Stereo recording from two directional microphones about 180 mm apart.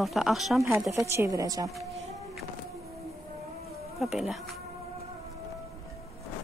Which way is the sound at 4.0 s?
Centre (ahead or behind).